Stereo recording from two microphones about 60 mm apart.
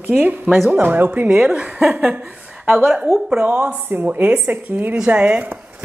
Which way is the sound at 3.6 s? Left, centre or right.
Right.